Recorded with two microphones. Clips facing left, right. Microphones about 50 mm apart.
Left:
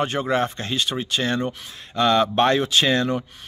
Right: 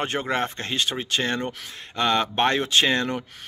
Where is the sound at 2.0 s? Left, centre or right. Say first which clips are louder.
Left 4 dB; right.